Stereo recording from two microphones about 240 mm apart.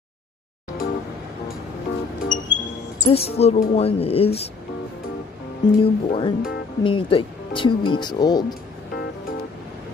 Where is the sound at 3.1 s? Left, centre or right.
Left.